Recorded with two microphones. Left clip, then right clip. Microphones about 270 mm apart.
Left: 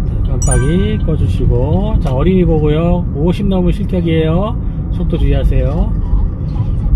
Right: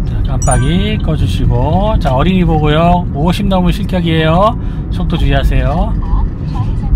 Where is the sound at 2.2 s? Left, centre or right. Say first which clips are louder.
Even; right.